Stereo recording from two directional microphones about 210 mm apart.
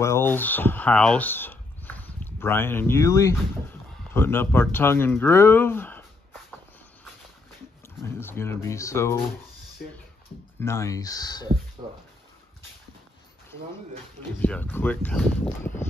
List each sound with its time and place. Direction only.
0.0 s speech: 10° left (ahead or behind)
8.0 s speech: 10° left (ahead or behind)
10.6 s speech: 15° left (ahead or behind)
11.8 s a sound: 25° right (ahead or behind)
14.4 s speech: 5° left (ahead or behind)